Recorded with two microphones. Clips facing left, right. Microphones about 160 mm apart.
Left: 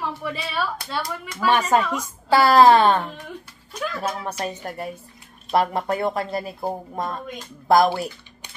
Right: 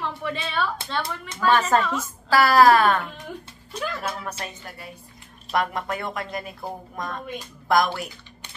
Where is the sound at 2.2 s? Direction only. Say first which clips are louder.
Left 2 dB; 25° left (ahead or behind).